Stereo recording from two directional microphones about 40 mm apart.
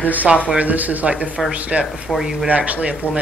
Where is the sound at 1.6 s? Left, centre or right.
Right.